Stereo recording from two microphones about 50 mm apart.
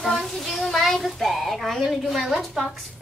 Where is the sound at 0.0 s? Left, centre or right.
Centre.